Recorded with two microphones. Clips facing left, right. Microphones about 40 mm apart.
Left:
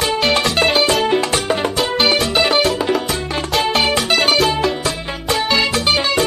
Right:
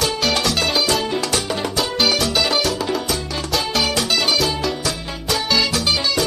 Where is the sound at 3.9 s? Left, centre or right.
Left.